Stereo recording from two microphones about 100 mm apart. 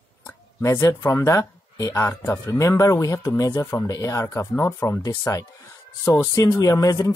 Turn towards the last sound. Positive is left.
turn(degrees=35)  # may be behind; listen again after turning